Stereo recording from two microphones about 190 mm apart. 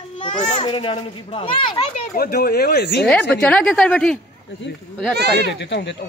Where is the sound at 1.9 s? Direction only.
50° left (ahead or behind).